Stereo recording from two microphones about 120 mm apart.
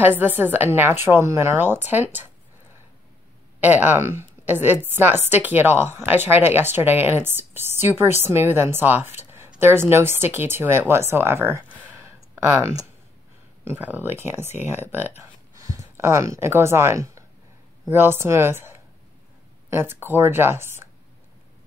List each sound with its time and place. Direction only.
0.0 s a woman's voice: 15° right (ahead or behind)
3.6 s a woman's voice: 15° right (ahead or behind)
15.5 s a woman's voice: 30° right (ahead or behind)